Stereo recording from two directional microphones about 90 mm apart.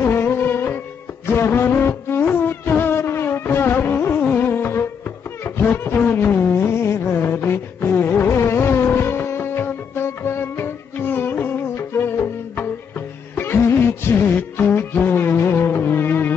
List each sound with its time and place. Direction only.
0.0 s music: 25° left (ahead or behind)
5.4 s a sound: 25° left (ahead or behind)
13.4 s music: 25° left (ahead or behind)